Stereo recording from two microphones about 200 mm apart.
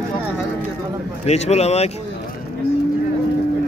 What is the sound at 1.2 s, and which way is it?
Speech, 30° left (ahead or behind).